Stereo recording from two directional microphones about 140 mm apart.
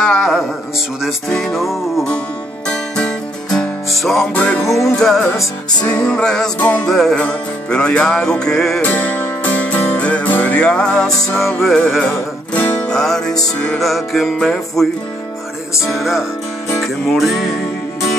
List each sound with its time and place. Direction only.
0.0 s music: 5° left (ahead or behind)
5.2 s music: 20° left (ahead or behind)
5.9 s music: 5° left (ahead or behind)
15.9 s music: centre (ahead or behind)